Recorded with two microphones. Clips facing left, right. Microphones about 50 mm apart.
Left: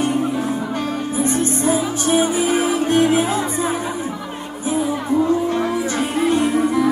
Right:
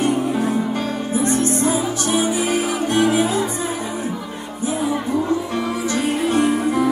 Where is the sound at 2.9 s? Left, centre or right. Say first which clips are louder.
Left 1 dB; left.